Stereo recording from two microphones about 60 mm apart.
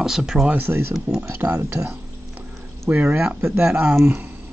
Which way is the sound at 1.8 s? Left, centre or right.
Right.